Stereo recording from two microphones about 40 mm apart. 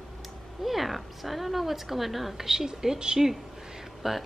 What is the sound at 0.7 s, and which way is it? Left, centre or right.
A woman's voice, centre.